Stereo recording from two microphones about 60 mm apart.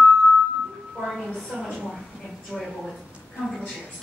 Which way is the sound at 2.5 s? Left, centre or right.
Left.